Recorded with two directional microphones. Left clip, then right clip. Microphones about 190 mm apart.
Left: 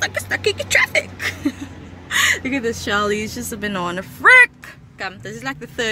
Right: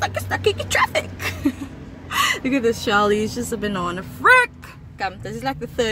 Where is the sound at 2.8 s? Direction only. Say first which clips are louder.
Right 1 dB; 10° left (ahead or behind).